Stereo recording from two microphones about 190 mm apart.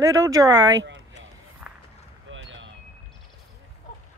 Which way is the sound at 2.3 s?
80° right.